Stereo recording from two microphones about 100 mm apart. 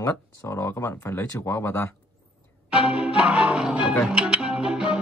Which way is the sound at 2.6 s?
10° right (ahead or behind).